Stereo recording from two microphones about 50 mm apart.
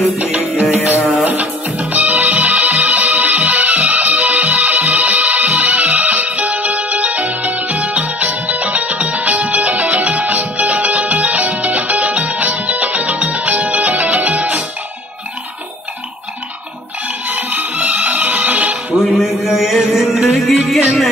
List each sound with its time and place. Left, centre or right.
0.2 s music: right
17.3 s music: right
18.9 s a sound: centre
20.3 s music: centre